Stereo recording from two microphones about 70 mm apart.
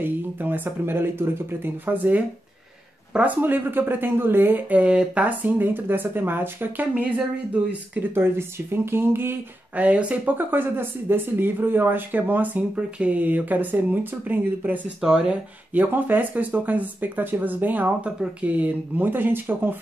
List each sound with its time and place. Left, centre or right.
0.0 s speech: right
6.9 s speech: centre
8.1 s speech: right
9.8 s speech: centre
15.0 s speech: centre
15.7 s speech: right